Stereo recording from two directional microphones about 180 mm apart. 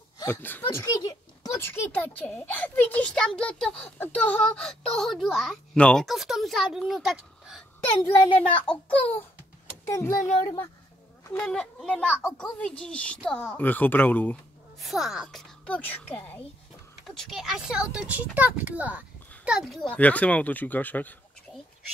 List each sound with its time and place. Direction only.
0.2 s a child's voice: 10° left (ahead or behind)
11.4 s a child's voice: 5° left (ahead or behind)
17.3 s speech: centre (ahead or behind)